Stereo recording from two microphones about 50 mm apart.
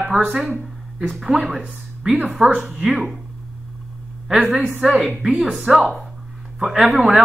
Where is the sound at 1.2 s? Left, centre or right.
Centre.